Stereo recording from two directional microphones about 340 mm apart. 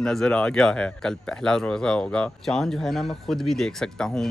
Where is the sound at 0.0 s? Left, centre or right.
Centre.